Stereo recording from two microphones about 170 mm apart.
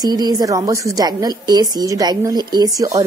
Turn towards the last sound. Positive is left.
turn(degrees=-20)  # may be behind; listen again after turning